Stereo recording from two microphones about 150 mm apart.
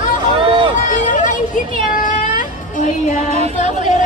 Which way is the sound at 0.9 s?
60° left (ahead or behind).